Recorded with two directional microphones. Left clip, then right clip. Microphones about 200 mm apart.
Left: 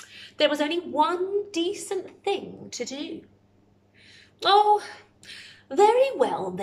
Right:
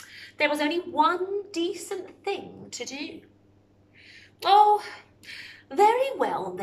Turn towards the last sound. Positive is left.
turn(degrees=15)  # may be behind; listen again after turning